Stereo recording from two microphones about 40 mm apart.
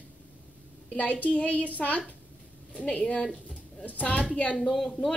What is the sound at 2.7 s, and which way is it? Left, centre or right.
A child's voice, left.